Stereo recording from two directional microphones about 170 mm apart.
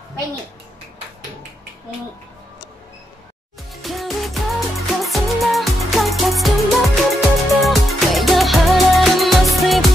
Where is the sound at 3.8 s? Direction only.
Centre (ahead or behind).